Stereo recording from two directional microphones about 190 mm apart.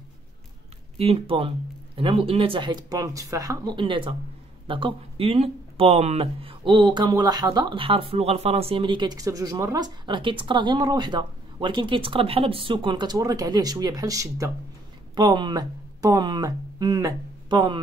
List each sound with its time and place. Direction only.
0.9 s speech: 30° right (ahead or behind)